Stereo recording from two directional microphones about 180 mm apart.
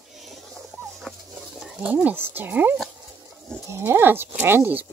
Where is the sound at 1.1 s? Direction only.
5° left (ahead or behind).